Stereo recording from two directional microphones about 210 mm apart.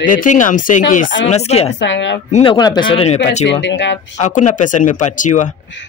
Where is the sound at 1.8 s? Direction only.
60° left (ahead or behind).